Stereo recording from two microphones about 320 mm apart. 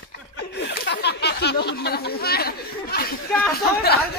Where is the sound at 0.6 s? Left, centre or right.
Left.